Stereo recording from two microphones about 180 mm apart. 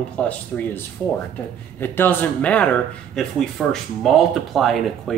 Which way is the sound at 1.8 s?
10° left (ahead or behind).